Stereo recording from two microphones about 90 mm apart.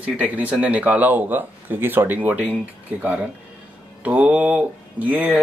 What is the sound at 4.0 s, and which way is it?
Speech, 15° right (ahead or behind).